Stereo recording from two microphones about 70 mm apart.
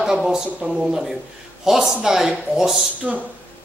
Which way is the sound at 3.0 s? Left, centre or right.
Centre.